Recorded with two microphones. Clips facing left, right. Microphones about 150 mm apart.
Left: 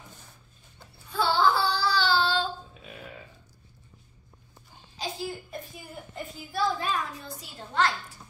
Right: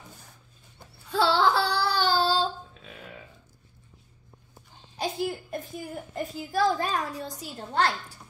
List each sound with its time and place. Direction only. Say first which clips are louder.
1.1 s child singing: right 2 dB; 75° right (ahead or behind); by 2.5 s 35° right (ahead or behind)
4.9 s a sound: right 5 dB; 60° right (ahead or behind)
6.1 s a child's voice: right 5 dB; 40° right (ahead or behind)